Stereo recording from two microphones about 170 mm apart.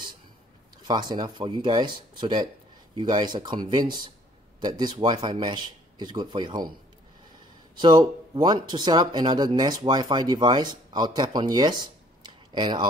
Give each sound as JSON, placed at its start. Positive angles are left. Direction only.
{"t": 0.8, "sound": "speech", "side_deg": -25}
{"t": 7.8, "sound": "speech", "side_deg": -25}